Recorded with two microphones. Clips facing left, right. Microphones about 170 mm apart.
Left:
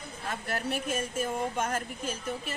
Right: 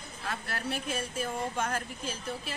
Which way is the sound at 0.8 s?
45° left (ahead or behind).